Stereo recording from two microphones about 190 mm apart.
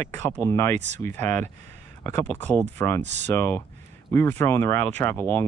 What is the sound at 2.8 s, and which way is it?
Speech, 15° left (ahead or behind).